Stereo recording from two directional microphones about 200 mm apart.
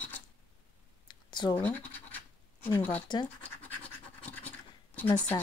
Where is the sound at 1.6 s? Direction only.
10° left (ahead or behind).